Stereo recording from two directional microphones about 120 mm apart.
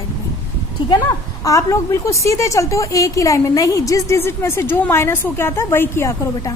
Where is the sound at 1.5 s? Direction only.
25° left (ahead or behind).